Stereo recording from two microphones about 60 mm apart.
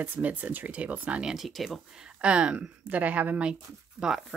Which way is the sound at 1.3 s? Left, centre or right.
Centre.